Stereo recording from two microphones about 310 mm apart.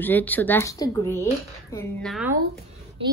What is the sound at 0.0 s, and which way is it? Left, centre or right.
Speech, centre.